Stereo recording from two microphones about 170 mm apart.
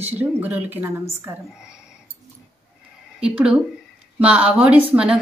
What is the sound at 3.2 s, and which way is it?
A woman's voice, 5° right (ahead or behind).